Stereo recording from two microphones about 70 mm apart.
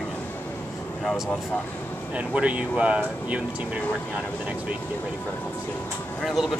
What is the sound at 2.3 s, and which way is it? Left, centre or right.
Speech, centre.